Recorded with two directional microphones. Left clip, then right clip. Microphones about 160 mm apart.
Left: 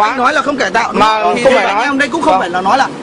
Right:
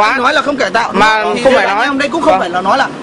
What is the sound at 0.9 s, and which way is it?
Speech, 15° right (ahead or behind).